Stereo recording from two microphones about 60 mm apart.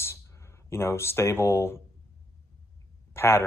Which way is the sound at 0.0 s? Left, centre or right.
Left.